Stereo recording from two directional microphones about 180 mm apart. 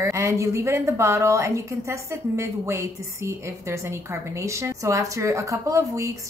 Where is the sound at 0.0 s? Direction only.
15° right (ahead or behind).